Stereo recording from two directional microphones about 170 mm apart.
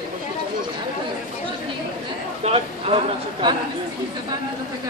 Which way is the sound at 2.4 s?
35° right (ahead or behind).